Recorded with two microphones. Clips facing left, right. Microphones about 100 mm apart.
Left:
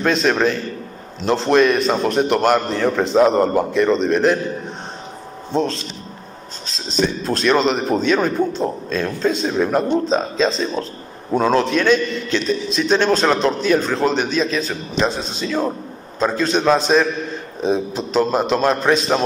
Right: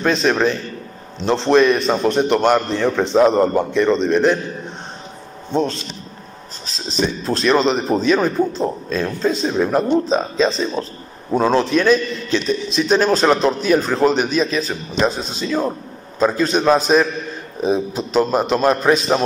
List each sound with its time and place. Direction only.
0.0 s a man's voice: centre (ahead or behind)
5.5 s a man's voice: centre (ahead or behind)